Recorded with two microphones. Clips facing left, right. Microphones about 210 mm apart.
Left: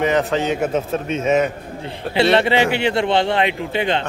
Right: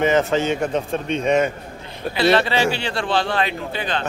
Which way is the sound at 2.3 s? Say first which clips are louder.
Left 3 dB; 20° left (ahead or behind).